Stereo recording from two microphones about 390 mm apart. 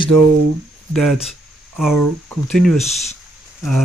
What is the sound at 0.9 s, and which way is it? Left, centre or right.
Speech, centre.